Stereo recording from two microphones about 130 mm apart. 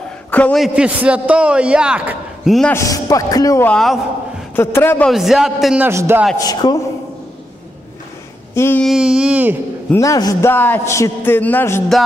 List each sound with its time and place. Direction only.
0.3 s a sound: 10° left (ahead or behind)
0.6 s a man's voice: 10° right (ahead or behind)
2.7 s speech: 25° left (ahead or behind)
3.6 s a man's voice: 5° left (ahead or behind)
4.6 s a man's voice: 15° left (ahead or behind)
5.0 s a man's voice: centre (ahead or behind)
5.9 s a man's voice: 20° right (ahead or behind)
6.4 s speech: 30° left (ahead or behind)
8.5 s a man's voice: 15° left (ahead or behind)
8.8 s a man's voice: 5° right (ahead or behind)
9.9 s speech: 25° left (ahead or behind)
10.5 s a man's voice: 15° left (ahead or behind)